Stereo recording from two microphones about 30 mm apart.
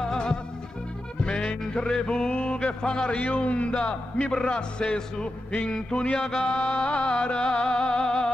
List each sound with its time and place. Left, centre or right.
0.0 s music: left
1.2 s music: left
2.4 s a sound: left
3.4 s speech: left
6.1 s mantra: left
6.8 s music: left